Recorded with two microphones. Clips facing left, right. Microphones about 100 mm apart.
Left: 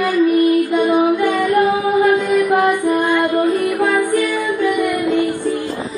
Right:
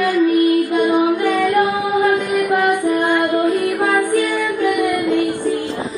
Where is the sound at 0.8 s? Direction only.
15° left (ahead or behind).